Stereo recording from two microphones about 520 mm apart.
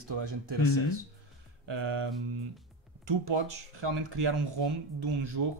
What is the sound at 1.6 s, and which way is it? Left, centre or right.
Speech, right.